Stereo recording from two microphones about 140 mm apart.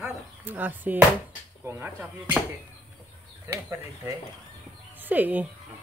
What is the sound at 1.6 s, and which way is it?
Speech, 15° right (ahead or behind).